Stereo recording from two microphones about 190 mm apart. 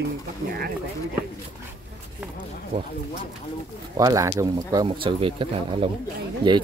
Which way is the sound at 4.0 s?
20° right (ahead or behind).